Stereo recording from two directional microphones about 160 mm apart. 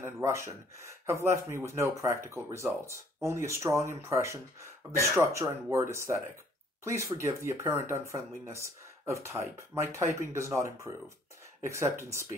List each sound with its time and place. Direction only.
0.0 s speech: 20° right (ahead or behind)